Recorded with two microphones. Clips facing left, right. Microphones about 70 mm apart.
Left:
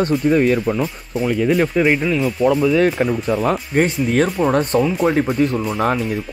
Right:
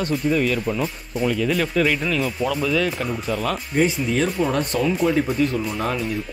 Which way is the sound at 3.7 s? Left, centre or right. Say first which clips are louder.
Left 1 dB; left.